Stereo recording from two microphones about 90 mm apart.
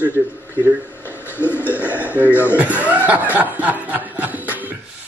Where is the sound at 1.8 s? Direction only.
15° right (ahead or behind).